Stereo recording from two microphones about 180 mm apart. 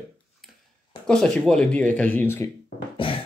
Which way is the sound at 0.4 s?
Centre (ahead or behind).